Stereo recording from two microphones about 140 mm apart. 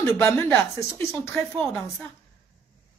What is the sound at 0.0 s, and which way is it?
A woman's voice, 20° left (ahead or behind).